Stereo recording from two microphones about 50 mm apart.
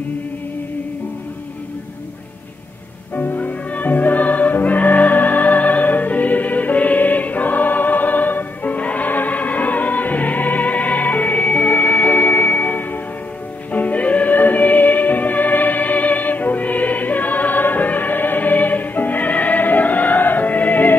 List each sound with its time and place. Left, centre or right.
3.2 s music: left